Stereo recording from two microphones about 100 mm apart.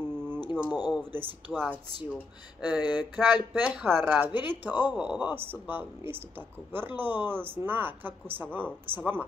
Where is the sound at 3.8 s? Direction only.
20° right (ahead or behind).